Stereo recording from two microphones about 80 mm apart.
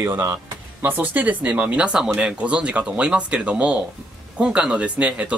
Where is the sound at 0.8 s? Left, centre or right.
Right.